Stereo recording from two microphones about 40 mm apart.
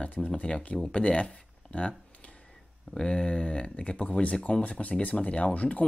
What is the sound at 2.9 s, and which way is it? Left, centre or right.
Speech, left.